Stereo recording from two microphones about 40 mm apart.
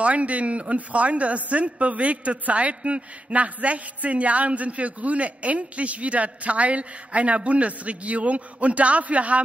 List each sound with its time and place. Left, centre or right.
0.0 s a woman's voice: right